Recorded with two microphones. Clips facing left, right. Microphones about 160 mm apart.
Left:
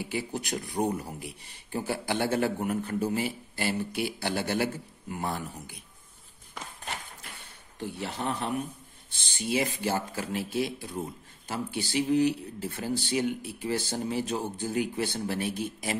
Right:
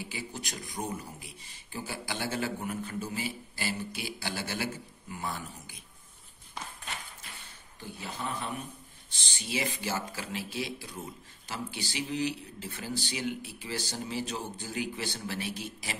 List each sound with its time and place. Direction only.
0.0 s a man's voice: 60° left (ahead or behind)
7.8 s a man's voice: 65° left (ahead or behind)
9.1 s speech: 55° left (ahead or behind)